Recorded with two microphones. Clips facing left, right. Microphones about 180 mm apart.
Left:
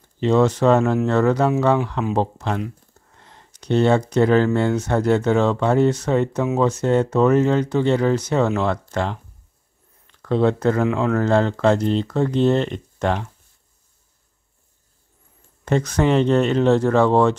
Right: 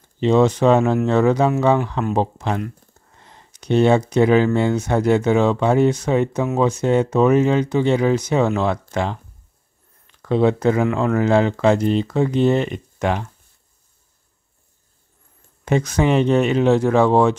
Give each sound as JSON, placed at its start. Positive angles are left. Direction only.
{"t": 0.2, "sound": "speech", "side_deg": -15}
{"t": 3.2, "sound": "a sound", "side_deg": -10}
{"t": 4.6, "sound": "speech", "side_deg": -15}
{"t": 15.6, "sound": "speech", "side_deg": -10}